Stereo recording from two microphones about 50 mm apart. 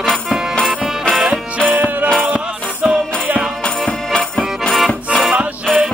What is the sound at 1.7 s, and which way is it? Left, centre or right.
Music, right.